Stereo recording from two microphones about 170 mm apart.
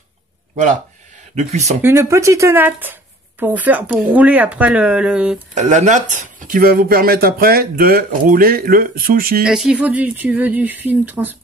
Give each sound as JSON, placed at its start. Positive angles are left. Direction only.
{"t": 1.3, "sound": "speech", "side_deg": -40}
{"t": 1.8, "sound": "speech", "side_deg": -15}
{"t": 5.5, "sound": "speech", "side_deg": -45}
{"t": 9.4, "sound": "speech", "side_deg": -5}